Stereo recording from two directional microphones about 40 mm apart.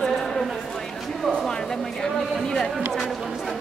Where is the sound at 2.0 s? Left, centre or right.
Centre.